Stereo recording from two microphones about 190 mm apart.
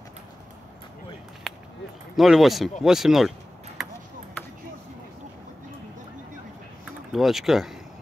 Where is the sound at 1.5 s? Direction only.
5° left (ahead or behind).